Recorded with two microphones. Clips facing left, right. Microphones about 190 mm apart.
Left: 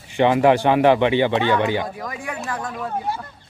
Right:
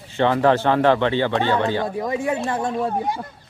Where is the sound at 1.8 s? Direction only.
25° right (ahead or behind).